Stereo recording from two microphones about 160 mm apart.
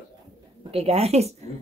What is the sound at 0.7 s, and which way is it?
Speech, 40° right (ahead or behind).